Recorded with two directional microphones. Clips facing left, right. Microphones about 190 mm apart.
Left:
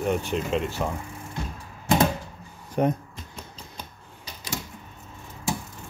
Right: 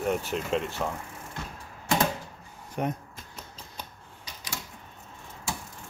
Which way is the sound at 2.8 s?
35° left (ahead or behind).